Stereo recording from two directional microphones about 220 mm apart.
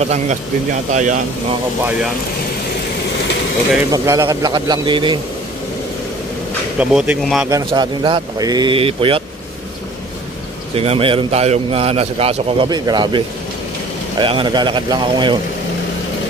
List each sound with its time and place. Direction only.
0.0 s a man's voice: 30° right (ahead or behind)
3.9 s a man's voice: 15° right (ahead or behind)
6.8 s speech: 5° right (ahead or behind)
7.5 s a man's voice: 20° right (ahead or behind)
10.7 s a man's voice: 25° right (ahead or behind)